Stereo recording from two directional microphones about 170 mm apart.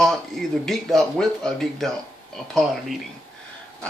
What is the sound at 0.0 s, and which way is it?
Speech, centre (ahead or behind).